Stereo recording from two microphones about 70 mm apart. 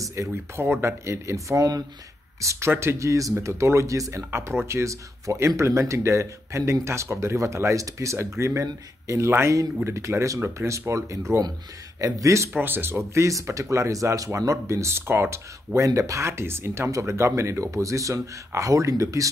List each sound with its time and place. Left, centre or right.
0.0 s speech: right
2.7 s speech: right
4.3 s speech: right
12.5 s speech: right